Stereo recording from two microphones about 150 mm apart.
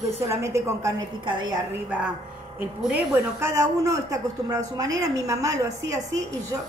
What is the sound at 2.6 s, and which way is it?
Speech, 10° right (ahead or behind).